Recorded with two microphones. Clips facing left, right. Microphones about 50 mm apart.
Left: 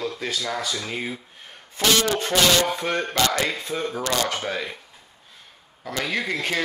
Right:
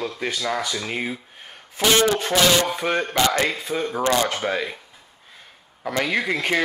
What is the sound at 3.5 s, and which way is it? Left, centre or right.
Speech, centre.